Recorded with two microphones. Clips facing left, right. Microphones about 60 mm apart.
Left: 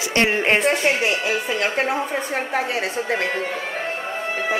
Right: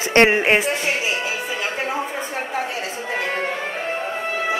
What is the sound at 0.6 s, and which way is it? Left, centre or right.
Speech, left.